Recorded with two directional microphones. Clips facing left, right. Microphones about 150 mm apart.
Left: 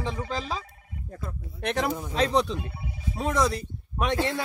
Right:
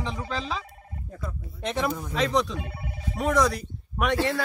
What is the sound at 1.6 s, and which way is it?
Speech, 70° left (ahead or behind).